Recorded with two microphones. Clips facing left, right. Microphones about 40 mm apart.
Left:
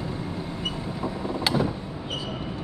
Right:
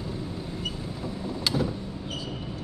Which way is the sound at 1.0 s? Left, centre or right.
Left.